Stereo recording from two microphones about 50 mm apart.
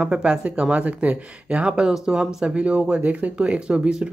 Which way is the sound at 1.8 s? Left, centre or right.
Centre.